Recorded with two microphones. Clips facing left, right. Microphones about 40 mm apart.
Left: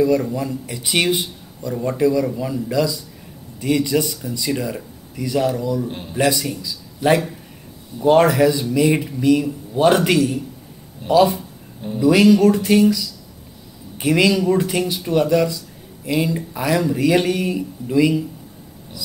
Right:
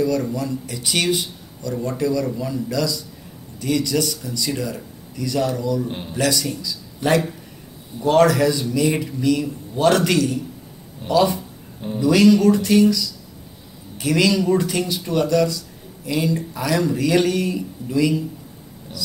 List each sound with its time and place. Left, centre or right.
0.0 s a man's voice: centre
13.9 s speech: left